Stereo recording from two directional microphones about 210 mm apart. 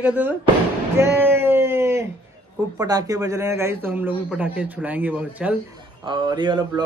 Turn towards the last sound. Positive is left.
turn(degrees=-20)  # may be behind; listen again after turning